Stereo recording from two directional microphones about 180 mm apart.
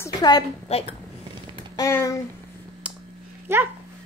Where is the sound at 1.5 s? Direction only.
20° left (ahead or behind).